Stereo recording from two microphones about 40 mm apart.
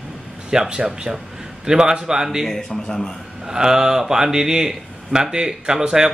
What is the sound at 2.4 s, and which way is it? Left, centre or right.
Speech, centre.